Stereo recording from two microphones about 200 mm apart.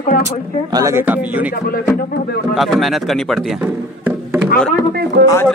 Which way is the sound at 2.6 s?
Centre (ahead or behind).